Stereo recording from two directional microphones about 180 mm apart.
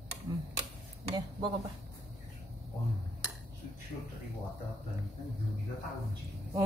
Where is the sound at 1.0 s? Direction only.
25° right (ahead or behind).